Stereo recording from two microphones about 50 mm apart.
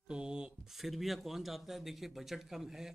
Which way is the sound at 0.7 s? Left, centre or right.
Centre.